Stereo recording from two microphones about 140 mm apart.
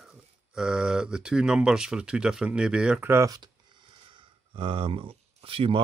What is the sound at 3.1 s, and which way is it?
Speech, 25° right (ahead or behind).